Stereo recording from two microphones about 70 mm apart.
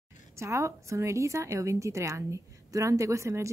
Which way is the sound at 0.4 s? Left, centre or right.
Right.